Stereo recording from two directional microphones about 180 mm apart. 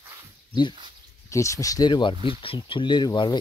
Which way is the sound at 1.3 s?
15° left (ahead or behind).